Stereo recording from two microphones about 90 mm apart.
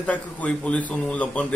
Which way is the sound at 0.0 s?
15° left (ahead or behind).